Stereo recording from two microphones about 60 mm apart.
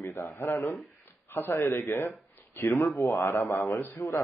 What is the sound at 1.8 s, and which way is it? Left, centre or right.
Speech, left.